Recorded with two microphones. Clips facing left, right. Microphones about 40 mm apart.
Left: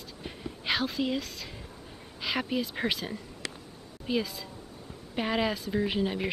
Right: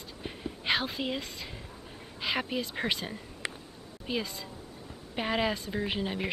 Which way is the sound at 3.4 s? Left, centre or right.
Right.